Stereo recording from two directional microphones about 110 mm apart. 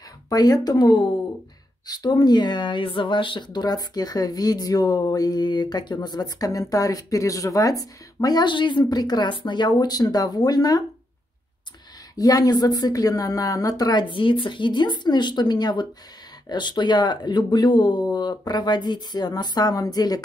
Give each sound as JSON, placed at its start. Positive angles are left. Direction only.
{"t": 0.3, "sound": "speech", "side_deg": 35}
{"t": 12.2, "sound": "speech", "side_deg": 35}